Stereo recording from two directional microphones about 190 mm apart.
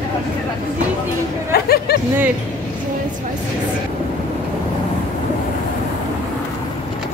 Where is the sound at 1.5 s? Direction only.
55° left (ahead or behind).